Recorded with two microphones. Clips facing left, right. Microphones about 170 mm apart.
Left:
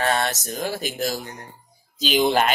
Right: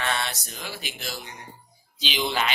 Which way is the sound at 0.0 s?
45° left (ahead or behind).